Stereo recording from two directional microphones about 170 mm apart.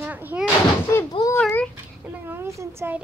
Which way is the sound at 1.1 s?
25° left (ahead or behind).